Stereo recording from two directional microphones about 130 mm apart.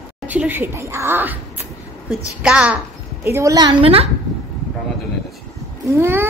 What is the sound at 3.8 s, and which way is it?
Speech, 45° right (ahead or behind).